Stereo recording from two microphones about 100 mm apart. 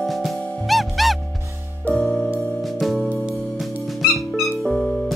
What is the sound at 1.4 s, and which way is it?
Music, 30° right (ahead or behind).